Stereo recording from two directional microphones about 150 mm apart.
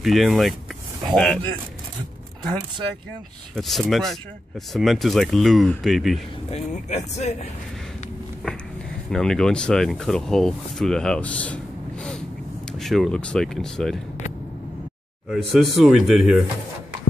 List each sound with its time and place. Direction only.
0.0 s speech: centre (ahead or behind)
3.5 s speech: centre (ahead or behind)
6.5 s speech: 45° left (ahead or behind)
9.1 s speech: 5° left (ahead or behind)
15.2 s speech: centre (ahead or behind)